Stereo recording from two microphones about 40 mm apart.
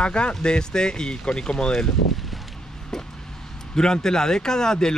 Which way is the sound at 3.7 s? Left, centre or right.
Centre.